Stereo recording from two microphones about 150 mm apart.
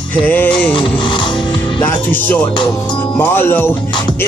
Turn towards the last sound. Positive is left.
turn(degrees=15)  # may be behind; listen again after turning